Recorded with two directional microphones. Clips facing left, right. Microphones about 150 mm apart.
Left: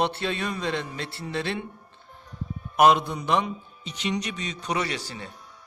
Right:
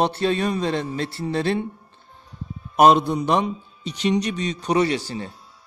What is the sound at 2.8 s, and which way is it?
A man's voice, 35° right (ahead or behind).